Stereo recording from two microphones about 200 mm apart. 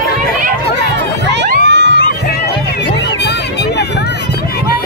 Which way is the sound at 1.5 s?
60° right (ahead or behind).